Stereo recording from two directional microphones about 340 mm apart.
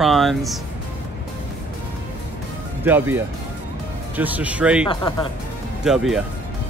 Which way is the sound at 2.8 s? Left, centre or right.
Centre.